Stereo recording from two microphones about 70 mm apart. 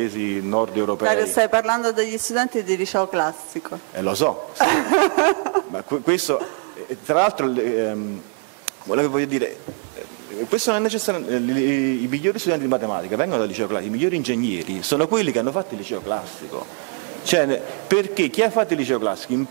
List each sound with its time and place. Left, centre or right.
0.5 s a man's voice: centre
10.5 s speech: centre
17.2 s speech: centre